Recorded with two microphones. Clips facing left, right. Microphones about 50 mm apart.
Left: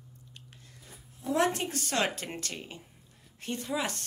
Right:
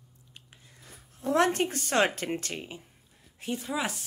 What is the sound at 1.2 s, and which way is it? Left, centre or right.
Speech, right.